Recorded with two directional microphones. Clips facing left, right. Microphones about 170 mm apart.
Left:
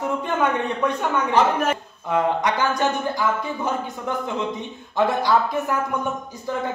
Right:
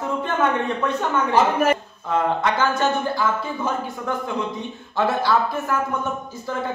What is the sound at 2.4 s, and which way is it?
Speech, 15° left (ahead or behind).